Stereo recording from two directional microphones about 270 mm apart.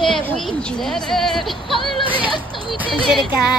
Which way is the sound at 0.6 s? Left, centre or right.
Centre.